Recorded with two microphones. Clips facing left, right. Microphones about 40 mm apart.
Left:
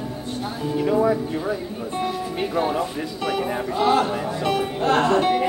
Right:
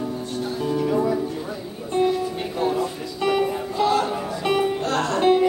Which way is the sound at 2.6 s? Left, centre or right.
Left.